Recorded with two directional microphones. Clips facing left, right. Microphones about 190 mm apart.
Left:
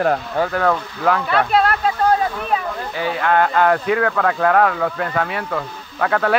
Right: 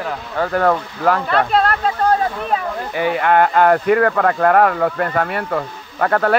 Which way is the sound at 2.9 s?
55° right (ahead or behind).